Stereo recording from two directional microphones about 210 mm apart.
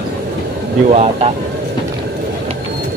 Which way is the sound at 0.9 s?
30° right (ahead or behind).